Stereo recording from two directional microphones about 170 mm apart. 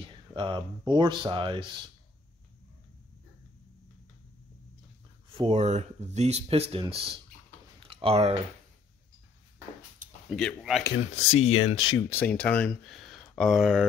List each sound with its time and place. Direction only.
0.3 s speech: 30° right (ahead or behind)
5.5 s speech: 40° right (ahead or behind)
7.8 s a sound: 35° right (ahead or behind)
10.0 s a sound: 50° right (ahead or behind)
10.3 s speech: centre (ahead or behind)
11.3 s speech: 35° left (ahead or behind)
12.1 s speech: 10° left (ahead or behind)